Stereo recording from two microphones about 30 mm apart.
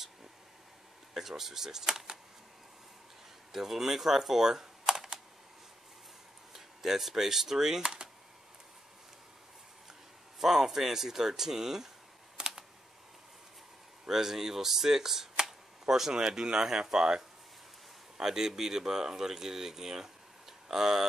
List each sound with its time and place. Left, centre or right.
1.1 s speech: centre
3.5 s speech: centre
6.5 s speech: centre
7.8 s computer keyboard: right
10.4 s speech: centre
12.4 s computer keyboard: right
14.0 s speech: centre